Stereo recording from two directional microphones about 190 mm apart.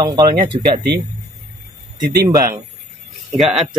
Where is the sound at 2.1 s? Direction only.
20° right (ahead or behind).